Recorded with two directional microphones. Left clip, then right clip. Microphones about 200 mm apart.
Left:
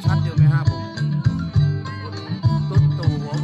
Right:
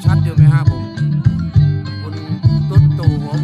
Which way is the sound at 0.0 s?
30° right (ahead or behind).